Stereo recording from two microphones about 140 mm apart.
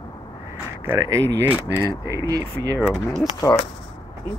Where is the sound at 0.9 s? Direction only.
25° right (ahead or behind).